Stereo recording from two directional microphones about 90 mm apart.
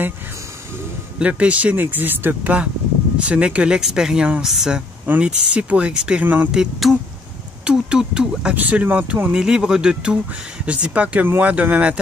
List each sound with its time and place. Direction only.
1.2 s speech: 15° right (ahead or behind)
5.0 s speech: 15° right (ahead or behind)
6.5 s speech: 5° right (ahead or behind)